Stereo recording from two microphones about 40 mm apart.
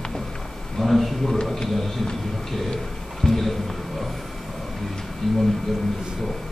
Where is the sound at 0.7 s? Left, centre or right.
Centre.